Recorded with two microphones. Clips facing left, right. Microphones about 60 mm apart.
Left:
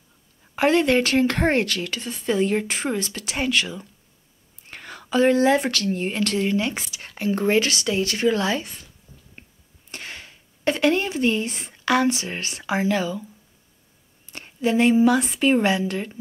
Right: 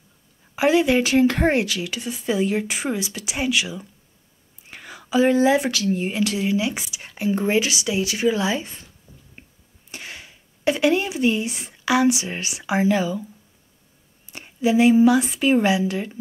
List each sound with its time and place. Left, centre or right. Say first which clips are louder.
0.6 s speech: right 1 dB; centre
4.6 s whispering: left 1 dB; centre
5.1 s speech: right 1 dB; centre
9.1 s a sound: right 1 dB; right
9.8 s speech: even; centre
14.3 s speech: right 2 dB; centre